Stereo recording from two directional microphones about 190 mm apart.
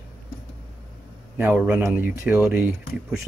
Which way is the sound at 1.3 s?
10° right (ahead or behind).